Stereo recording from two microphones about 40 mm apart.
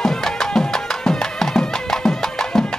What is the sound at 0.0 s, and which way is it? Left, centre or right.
Music, centre.